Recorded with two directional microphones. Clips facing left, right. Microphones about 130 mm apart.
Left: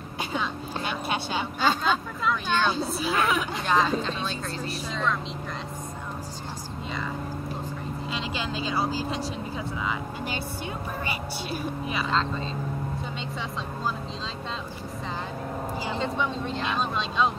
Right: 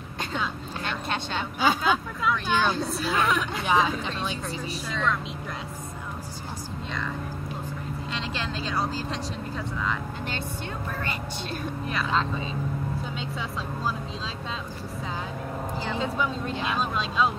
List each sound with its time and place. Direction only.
0.2 s a sound: 10° left (ahead or behind)
1.6 s vehicle: 5° right (ahead or behind)
2.7 s speech: centre (ahead or behind)
3.6 s speech: 10° right (ahead or behind)
4.6 s speech: centre (ahead or behind)
8.1 s speech: centre (ahead or behind)
12.1 s speech: 10° right (ahead or behind)
16.0 s speech: centre (ahead or behind)